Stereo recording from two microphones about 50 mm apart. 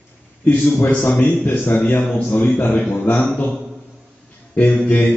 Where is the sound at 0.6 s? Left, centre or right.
Left.